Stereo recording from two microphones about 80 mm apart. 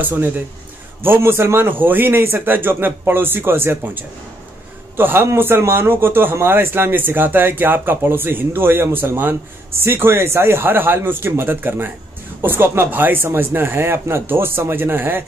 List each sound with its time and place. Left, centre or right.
0.0 s speech: right